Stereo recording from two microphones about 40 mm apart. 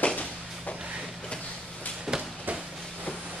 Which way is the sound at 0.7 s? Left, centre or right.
Right.